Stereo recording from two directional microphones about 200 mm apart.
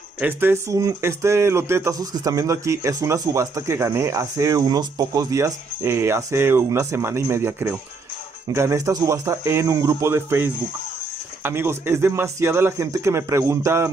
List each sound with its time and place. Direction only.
0.2 s speech: 10° right (ahead or behind)